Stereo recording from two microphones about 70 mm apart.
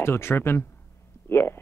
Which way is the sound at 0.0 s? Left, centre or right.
Left.